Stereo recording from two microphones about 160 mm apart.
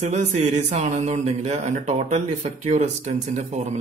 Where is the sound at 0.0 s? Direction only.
45° right (ahead or behind).